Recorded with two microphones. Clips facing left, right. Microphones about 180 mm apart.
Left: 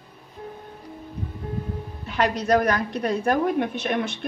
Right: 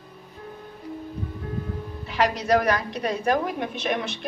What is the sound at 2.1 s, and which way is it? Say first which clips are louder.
A woman's voice: left 1 dB; 50° left (ahead or behind).